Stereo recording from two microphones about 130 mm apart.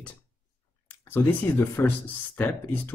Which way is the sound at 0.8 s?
15° left (ahead or behind).